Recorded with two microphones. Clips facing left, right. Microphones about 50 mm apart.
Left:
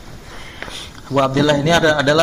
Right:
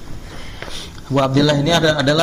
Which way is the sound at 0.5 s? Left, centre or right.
Centre.